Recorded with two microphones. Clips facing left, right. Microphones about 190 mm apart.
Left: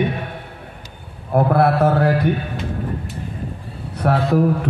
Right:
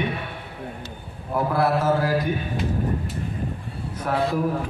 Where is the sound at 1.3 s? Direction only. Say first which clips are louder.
Left 6 dB; 60° left (ahead or behind).